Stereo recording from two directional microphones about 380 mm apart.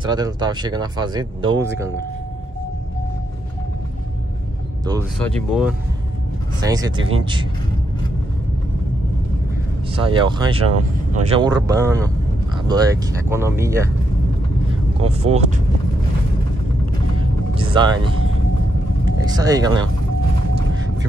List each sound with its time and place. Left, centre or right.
0.0 s speech: centre
5.5 s speech: centre
9.9 s speech: centre
15.0 s speech: centre
17.2 s vehicle: centre
19.2 s speech: centre